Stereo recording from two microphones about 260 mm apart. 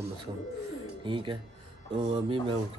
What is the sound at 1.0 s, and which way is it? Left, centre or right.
Speech, centre.